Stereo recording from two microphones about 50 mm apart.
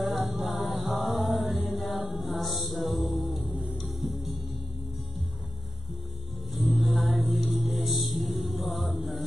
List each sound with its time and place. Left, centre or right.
0.0 s mantra: centre
6.5 s music: centre